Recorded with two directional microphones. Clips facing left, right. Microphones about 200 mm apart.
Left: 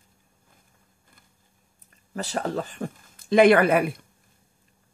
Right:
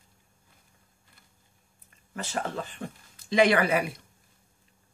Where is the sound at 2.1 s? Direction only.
40° left (ahead or behind); by 3.9 s 55° left (ahead or behind).